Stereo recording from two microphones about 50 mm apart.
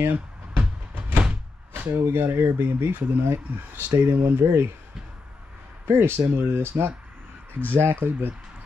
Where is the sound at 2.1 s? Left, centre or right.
Right.